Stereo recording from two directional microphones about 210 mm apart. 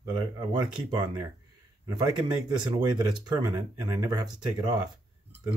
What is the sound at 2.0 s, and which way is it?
Speech, 20° right (ahead or behind).